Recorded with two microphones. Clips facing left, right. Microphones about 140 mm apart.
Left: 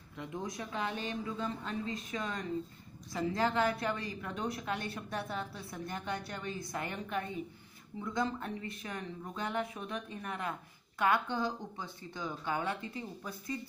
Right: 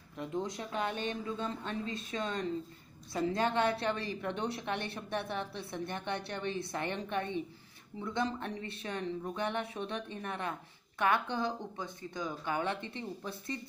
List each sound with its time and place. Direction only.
0.5 s a woman's voice: 30° right (ahead or behind)
11.2 s a woman's voice: 15° right (ahead or behind)